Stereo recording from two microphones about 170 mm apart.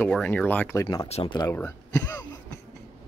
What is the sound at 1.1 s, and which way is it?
Speech, 40° left (ahead or behind).